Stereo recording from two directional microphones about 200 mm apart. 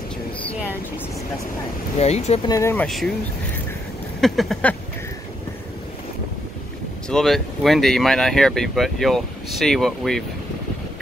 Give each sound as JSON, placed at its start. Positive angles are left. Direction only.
{"t": 2.0, "sound": "speech", "side_deg": 35}
{"t": 2.4, "sound": "speech", "side_deg": 15}
{"t": 4.2, "sound": "speech", "side_deg": 0}
{"t": 7.1, "sound": "speech", "side_deg": 0}